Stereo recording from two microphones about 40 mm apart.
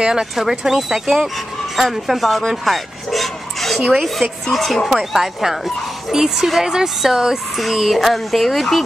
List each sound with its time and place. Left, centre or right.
0.0 s speech: centre
0.4 s a woman's voice: centre
1.8 s dog: centre
3.9 s speech: centre
4.8 s a woman's voice: centre